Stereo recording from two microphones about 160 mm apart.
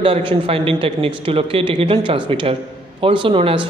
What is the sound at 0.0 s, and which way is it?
A man's voice, 35° right (ahead or behind).